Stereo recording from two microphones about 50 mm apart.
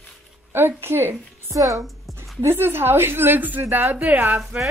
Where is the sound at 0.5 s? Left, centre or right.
Right.